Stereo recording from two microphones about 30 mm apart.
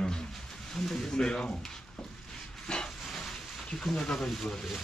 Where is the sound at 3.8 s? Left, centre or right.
Centre.